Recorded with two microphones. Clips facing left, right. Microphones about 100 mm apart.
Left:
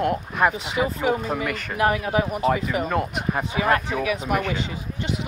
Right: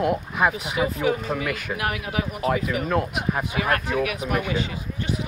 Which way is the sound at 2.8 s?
Centre (ahead or behind).